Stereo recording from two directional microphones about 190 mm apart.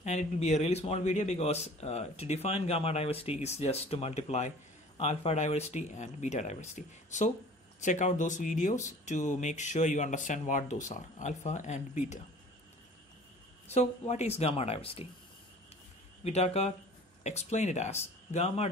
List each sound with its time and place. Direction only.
0.0 s speech: 35° left (ahead or behind)
13.7 s speech: 35° left (ahead or behind)
16.3 s speech: 35° left (ahead or behind)